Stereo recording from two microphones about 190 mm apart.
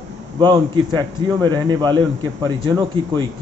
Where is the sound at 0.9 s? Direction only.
20° right (ahead or behind).